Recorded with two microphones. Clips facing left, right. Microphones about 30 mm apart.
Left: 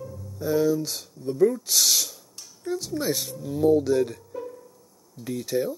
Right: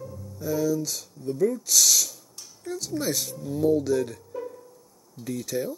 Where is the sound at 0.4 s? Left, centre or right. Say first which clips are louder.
Left 3 dB; left.